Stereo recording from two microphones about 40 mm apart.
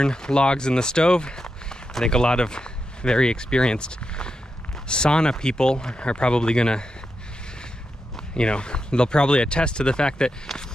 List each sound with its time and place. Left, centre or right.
0.0 s speech: left
8.4 s speech: left